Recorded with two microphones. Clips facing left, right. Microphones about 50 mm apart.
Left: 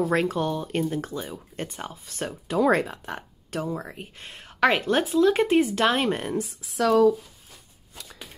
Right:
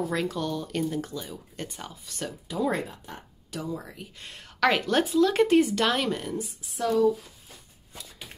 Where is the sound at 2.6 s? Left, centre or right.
Left.